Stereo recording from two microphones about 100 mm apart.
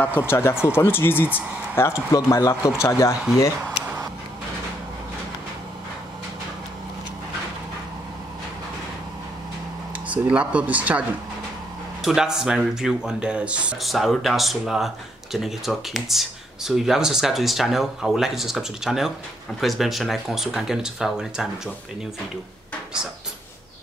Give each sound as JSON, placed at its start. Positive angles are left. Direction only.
{"t": 0.3, "sound": "speech", "side_deg": 25}
{"t": 10.0, "sound": "speech", "side_deg": -15}
{"t": 12.0, "sound": "speech", "side_deg": -5}
{"t": 13.7, "sound": "speech", "side_deg": 0}